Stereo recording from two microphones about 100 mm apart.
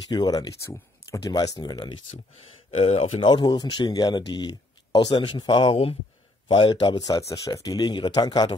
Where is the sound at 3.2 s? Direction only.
45° left (ahead or behind).